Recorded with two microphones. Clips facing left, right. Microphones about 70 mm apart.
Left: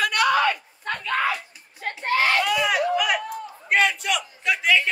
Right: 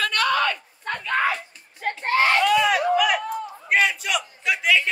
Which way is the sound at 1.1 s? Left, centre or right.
Right.